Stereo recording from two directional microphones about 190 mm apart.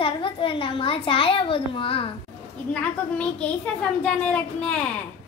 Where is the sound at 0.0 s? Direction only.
25° left (ahead or behind).